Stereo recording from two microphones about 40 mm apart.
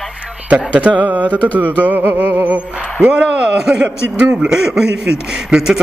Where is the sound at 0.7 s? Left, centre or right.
Right.